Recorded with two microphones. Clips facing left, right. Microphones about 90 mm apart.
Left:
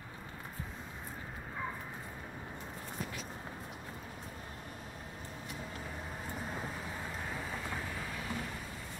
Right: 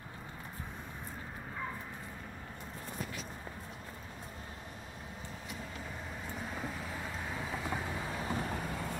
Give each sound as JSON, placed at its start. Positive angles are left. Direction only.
{"t": 7.2, "sound": "vehicle", "side_deg": -5}
{"t": 8.1, "sound": "vehicle", "side_deg": -35}